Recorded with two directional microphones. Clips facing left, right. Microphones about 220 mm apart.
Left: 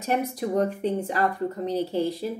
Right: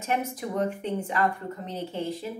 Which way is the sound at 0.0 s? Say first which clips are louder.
Left 4 dB; 35° left (ahead or behind).